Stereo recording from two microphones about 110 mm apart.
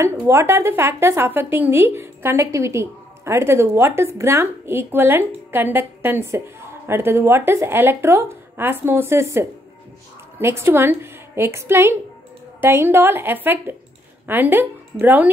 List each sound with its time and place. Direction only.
0.0 s speech: 25° right (ahead or behind)